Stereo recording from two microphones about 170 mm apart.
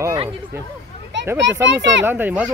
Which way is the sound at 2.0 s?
10° right (ahead or behind).